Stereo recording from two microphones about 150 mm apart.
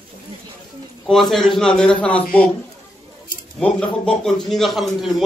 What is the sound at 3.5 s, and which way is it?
A man's voice, 5° left (ahead or behind).